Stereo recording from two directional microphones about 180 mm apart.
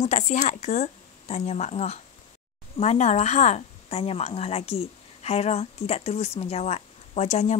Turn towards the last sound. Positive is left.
turn(degrees=40)  # may be behind; listen again after turning